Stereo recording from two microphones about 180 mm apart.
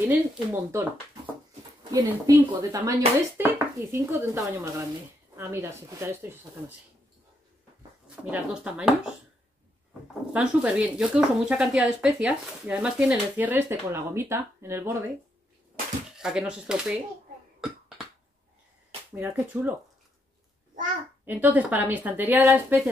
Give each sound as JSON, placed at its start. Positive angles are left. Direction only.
{"t": 0.1, "sound": "speech", "side_deg": -10}
{"t": 1.9, "sound": "speech", "side_deg": -20}
{"t": 8.3, "sound": "speech", "side_deg": -5}
{"t": 10.3, "sound": "speech", "side_deg": -5}
{"t": 16.2, "sound": "speech", "side_deg": -5}
{"t": 19.1, "sound": "speech", "side_deg": -5}
{"t": 21.3, "sound": "speech", "side_deg": -10}